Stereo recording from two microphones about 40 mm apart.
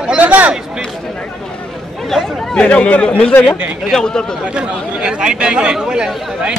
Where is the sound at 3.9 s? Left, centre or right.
Centre.